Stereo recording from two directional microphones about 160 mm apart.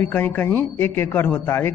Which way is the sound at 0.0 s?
10° left (ahead or behind).